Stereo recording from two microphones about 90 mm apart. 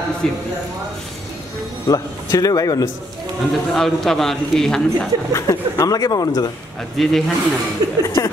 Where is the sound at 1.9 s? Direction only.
40° left (ahead or behind).